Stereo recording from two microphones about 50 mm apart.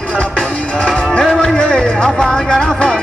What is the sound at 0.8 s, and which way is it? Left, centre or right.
Music, centre.